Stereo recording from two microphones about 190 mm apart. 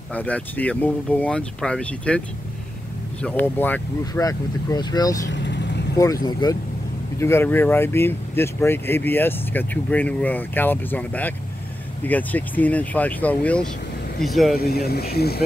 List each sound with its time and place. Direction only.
0.1 s speech: 10° left (ahead or behind)
5.3 s vehicle: 70° left (ahead or behind)
5.9 s speech: 20° left (ahead or behind); by 14.5 s centre (ahead or behind)
14.5 s speech: 55° left (ahead or behind)